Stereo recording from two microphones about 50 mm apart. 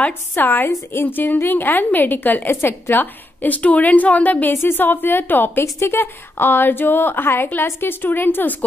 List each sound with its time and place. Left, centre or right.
0.3 s a woman's voice: left
4.5 s a woman's voice: left
5.6 s a woman's voice: left